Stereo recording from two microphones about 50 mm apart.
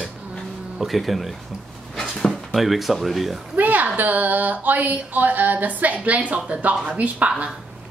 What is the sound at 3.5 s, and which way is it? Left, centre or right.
A woman's voice, right.